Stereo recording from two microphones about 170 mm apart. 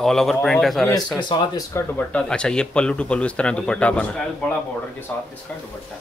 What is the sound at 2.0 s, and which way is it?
Speech, 5° left (ahead or behind).